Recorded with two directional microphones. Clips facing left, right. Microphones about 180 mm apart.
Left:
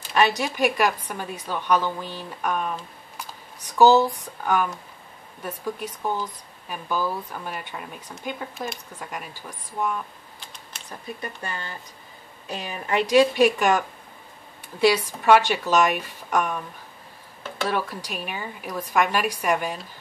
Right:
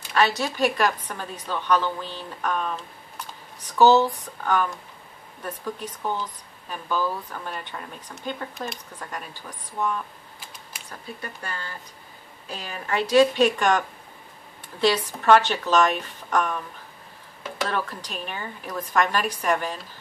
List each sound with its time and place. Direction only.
0.1 s speech: 15° left (ahead or behind)
17.6 s speech: 10° left (ahead or behind)